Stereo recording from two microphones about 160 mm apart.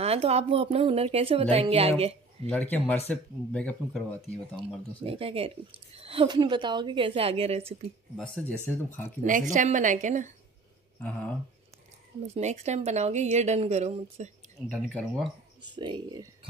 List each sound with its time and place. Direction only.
0.0 s speech: 40° right (ahead or behind)
2.5 s speech: 10° left (ahead or behind)
5.0 s speech: 35° right (ahead or behind)
8.2 s speech: 10° left (ahead or behind)
9.2 s a woman's voice: 55° right (ahead or behind)
12.4 s a woman's voice: 45° right (ahead or behind)
14.7 s speech: 5° left (ahead or behind)
15.7 s speech: 30° right (ahead or behind)